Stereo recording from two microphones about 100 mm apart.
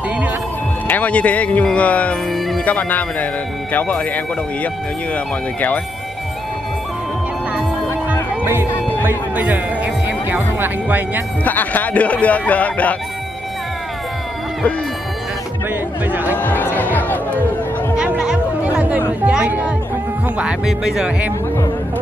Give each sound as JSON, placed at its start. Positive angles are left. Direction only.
{"t": 0.8, "sound": "speech", "side_deg": 15}
{"t": 2.3, "sound": "music", "side_deg": 0}
{"t": 2.6, "sound": "speech", "side_deg": 15}
{"t": 8.7, "sound": "music", "side_deg": 20}
{"t": 9.3, "sound": "speech", "side_deg": -15}
{"t": 11.4, "sound": "speech", "side_deg": 15}
{"t": 16.1, "sound": "crowd", "side_deg": -20}
{"t": 16.3, "sound": "music", "side_deg": 20}
{"t": 17.9, "sound": "chatter", "side_deg": -10}
{"t": 20.3, "sound": "speech", "side_deg": -5}